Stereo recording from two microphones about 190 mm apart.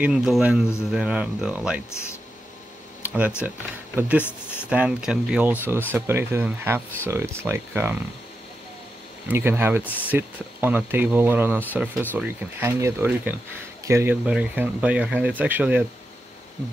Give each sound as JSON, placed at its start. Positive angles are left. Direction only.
{"t": 0.0, "sound": "speech", "side_deg": -5}
{"t": 3.0, "sound": "a sound", "side_deg": -5}
{"t": 3.4, "sound": "speech", "side_deg": -10}
{"t": 4.2, "sound": "speech", "side_deg": 10}
{"t": 4.6, "sound": "speech", "side_deg": -5}
{"t": 9.3, "sound": "speech", "side_deg": -10}